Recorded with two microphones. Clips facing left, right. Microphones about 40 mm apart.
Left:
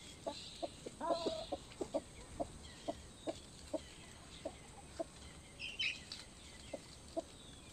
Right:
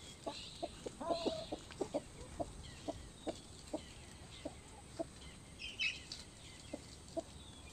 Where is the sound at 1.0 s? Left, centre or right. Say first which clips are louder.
Left 1 dB; centre.